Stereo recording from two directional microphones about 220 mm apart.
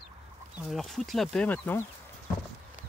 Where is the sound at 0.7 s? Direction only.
Centre (ahead or behind).